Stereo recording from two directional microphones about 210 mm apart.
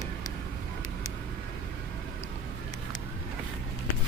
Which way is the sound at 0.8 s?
85° left.